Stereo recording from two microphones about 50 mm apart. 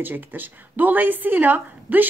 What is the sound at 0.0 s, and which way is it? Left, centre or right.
Speech, right.